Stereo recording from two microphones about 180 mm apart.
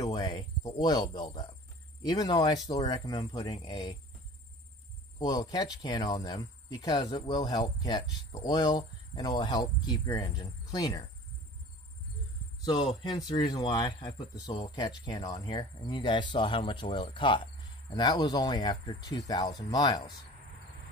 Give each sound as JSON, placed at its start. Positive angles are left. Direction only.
{"t": 0.0, "sound": "speech", "side_deg": 25}
{"t": 5.2, "sound": "speech", "side_deg": 20}
{"t": 12.6, "sound": "speech", "side_deg": 25}